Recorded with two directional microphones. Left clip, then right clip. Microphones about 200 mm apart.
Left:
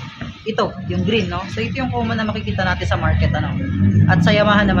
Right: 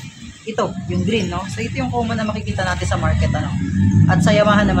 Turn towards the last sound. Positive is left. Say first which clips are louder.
# even
turn(degrees=-15)  # may be behind; listen again after turning